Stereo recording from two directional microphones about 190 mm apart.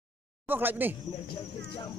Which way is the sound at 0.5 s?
10° right (ahead or behind).